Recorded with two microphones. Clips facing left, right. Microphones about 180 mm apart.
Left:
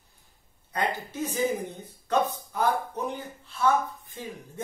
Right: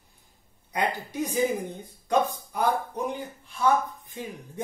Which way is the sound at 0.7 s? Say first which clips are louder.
Right 2 dB; 15° right (ahead or behind).